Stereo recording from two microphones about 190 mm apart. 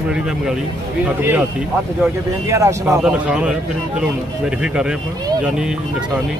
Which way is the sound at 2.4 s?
15° right (ahead or behind).